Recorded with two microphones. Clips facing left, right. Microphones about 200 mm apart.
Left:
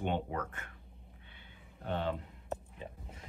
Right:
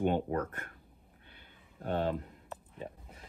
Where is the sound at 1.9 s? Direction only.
45° right (ahead or behind).